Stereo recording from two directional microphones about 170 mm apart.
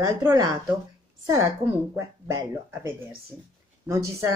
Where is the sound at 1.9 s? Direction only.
15° right (ahead or behind).